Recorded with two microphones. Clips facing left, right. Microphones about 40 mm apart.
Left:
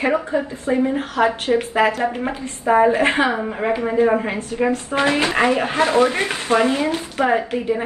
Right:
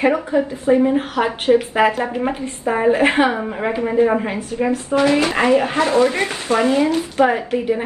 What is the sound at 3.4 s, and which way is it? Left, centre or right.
Speech, centre.